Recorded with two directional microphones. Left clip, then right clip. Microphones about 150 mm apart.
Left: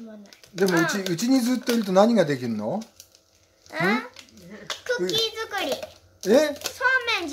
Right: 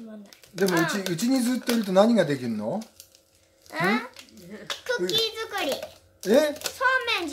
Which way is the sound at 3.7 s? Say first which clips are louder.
Left 1 dB; 5° right (ahead or behind).